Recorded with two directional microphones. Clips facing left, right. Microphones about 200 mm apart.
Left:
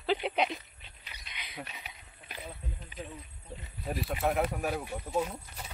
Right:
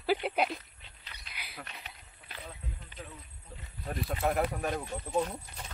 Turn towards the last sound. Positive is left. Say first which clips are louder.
# even
turn(degrees=10)  # may be behind; listen again after turning